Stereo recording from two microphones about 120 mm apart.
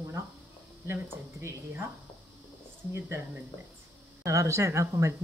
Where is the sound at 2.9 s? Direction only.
20° right (ahead or behind).